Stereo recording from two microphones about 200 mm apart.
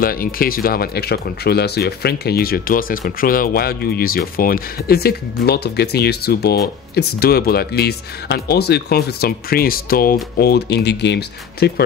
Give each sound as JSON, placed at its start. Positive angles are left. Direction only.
{"t": 0.0, "sound": "speech", "side_deg": 45}